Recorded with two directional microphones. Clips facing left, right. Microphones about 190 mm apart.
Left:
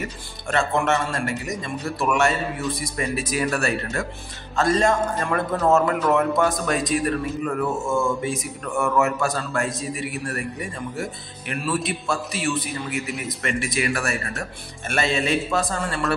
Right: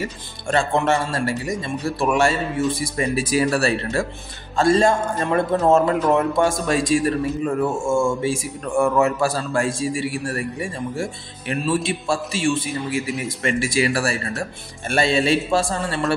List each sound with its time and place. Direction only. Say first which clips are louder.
0.0 s a man's voice: right 3 dB; 30° right (ahead or behind)